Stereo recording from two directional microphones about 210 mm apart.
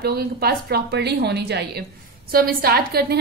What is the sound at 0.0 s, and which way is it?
A woman's voice, 45° right (ahead or behind).